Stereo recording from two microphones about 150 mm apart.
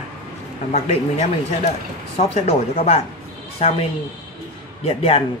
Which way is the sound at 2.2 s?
45° left (ahead or behind).